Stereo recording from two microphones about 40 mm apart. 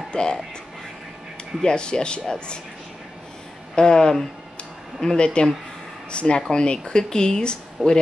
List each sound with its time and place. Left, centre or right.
0.1 s speech: left
1.6 s speech: centre
3.7 s speech: centre